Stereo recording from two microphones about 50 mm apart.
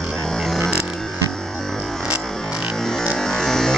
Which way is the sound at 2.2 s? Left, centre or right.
Centre.